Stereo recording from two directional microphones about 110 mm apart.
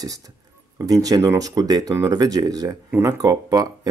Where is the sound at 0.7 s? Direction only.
30° right (ahead or behind).